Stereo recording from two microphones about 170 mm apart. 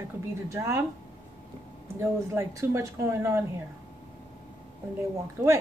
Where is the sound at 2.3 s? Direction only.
15° right (ahead or behind).